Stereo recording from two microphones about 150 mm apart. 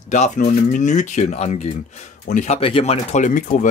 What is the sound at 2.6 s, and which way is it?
Speech, 40° left (ahead or behind).